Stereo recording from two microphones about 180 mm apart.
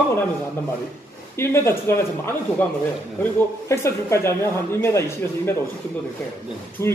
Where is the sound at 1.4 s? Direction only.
15° left (ahead or behind).